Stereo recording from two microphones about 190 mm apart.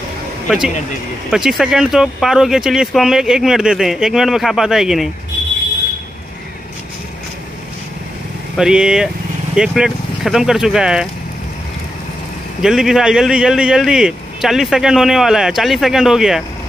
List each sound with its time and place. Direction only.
0.5 s speech: 5° right (ahead or behind)
8.5 s speech: 5° right (ahead or behind)
12.6 s speech: 5° right (ahead or behind)